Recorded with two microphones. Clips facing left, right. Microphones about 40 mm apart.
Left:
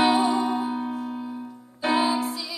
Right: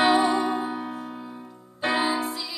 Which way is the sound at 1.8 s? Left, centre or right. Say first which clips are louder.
Left 2 dB; right.